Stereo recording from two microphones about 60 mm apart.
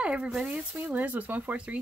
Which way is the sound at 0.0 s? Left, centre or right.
Centre.